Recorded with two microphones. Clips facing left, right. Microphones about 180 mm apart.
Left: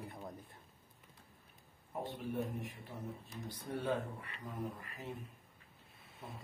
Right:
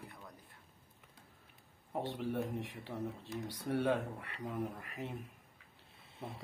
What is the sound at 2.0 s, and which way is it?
Speech, 80° right.